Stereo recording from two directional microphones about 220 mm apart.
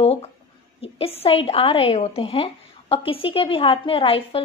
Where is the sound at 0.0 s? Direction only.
25° left (ahead or behind).